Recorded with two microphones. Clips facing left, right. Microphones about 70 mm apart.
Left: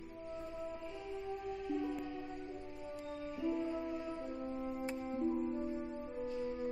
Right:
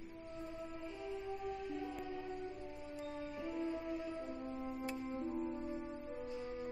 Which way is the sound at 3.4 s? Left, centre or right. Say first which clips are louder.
Left 5 dB; centre.